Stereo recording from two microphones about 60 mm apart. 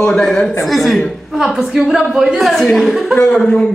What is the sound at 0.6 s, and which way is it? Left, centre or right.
A woman's voice, centre.